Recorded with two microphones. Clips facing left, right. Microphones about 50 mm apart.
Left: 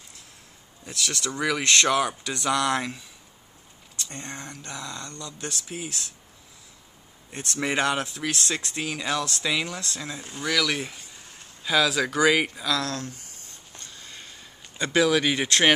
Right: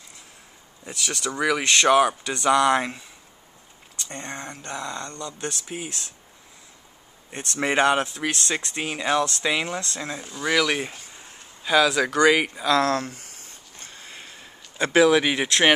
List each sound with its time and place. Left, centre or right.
0.8 s speech: centre
4.0 s speech: right
7.3 s speech: right
11.6 s speech: centre
12.7 s speech: right
13.7 s a sound: right
15.2 s speech: centre